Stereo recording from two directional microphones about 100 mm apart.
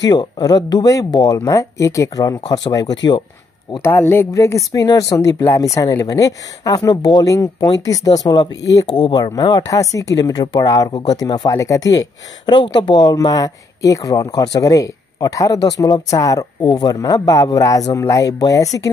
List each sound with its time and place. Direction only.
0.0 s speech: 45° left (ahead or behind)
3.8 s speech: 25° left (ahead or behind)
12.5 s speech: 55° left (ahead or behind); by 18.9 s 35° left (ahead or behind)